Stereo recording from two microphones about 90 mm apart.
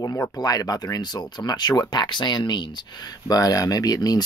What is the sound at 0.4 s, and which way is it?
Speech, 45° left (ahead or behind).